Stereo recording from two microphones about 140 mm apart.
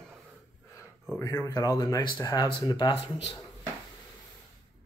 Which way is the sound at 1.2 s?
20° left (ahead or behind).